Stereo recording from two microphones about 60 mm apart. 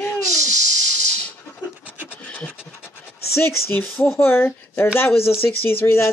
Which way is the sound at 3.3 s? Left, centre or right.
Left.